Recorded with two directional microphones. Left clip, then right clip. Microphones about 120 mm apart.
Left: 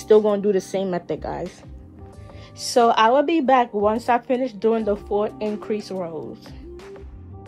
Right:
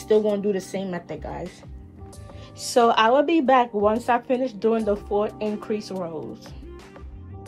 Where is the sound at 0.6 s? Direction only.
55° left (ahead or behind).